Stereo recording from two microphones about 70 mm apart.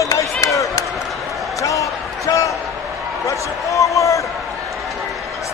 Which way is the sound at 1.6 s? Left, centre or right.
Left.